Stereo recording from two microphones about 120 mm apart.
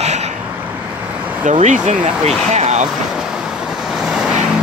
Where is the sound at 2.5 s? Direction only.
70° right (ahead or behind).